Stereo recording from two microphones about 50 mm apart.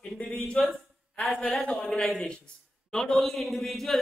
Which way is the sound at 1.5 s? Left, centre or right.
Centre.